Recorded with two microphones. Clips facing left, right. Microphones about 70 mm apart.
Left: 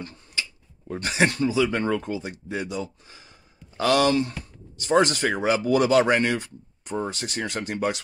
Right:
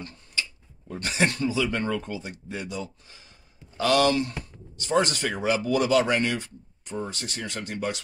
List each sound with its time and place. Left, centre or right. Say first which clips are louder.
0.0 s tick-tock: even; centre
0.8 s speech: left 3 dB; left
6.3 s speech: left 3 dB; centre